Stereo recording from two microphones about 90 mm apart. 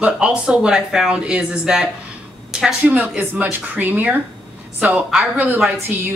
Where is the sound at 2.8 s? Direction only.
20° right (ahead or behind).